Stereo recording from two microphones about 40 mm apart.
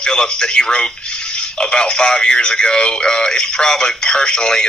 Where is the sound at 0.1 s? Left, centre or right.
Centre.